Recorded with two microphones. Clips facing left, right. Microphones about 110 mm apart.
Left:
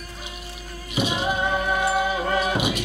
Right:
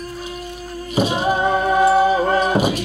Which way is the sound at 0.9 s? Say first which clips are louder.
Right 6 dB; 40° right (ahead or behind).